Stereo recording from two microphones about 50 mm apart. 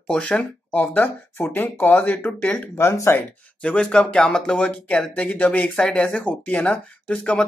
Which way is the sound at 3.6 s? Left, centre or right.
Left.